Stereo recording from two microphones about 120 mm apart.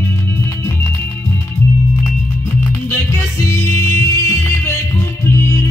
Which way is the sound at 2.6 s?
20° left (ahead or behind).